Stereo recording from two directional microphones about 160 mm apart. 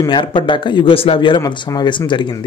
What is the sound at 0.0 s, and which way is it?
Speech, 30° left (ahead or behind).